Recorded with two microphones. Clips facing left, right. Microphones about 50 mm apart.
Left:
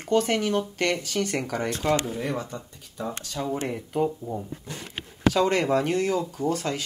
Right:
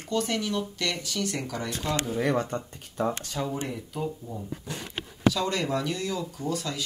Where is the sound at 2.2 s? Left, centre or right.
Right.